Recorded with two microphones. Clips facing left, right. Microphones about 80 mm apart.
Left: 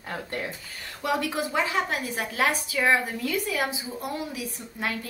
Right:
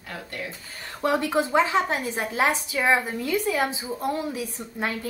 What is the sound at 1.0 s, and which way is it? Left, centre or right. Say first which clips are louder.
A woman's voice: right 4 dB; right.